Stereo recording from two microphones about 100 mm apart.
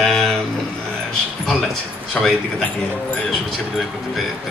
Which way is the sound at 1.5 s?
5° left (ahead or behind).